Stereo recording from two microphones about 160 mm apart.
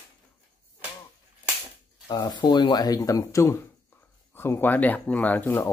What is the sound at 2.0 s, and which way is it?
Speech, 25° left (ahead or behind).